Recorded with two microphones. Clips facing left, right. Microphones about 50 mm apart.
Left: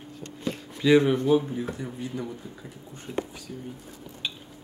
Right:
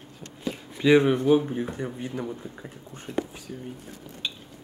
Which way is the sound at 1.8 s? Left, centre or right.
Right.